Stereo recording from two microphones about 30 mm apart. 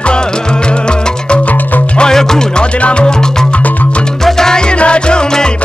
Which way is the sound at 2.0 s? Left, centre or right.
Left.